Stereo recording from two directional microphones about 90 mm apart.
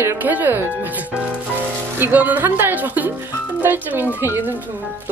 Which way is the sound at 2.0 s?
20° right (ahead or behind).